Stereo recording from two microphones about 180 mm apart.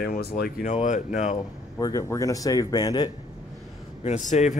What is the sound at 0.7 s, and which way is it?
Speech, 45° left (ahead or behind).